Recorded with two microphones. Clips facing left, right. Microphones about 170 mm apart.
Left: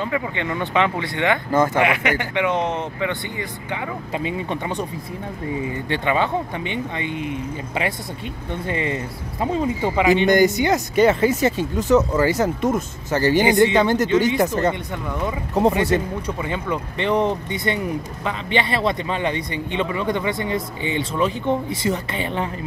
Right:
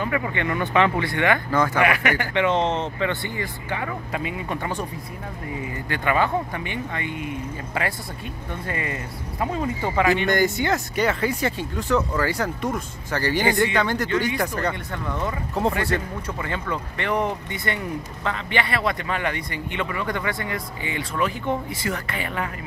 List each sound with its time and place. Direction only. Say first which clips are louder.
0.0 s speech: left 1 dB; 20° left (ahead or behind)
5.9 s speech: even; 20° left (ahead or behind)